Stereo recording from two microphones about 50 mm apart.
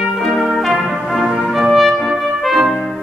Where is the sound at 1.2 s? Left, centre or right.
Centre.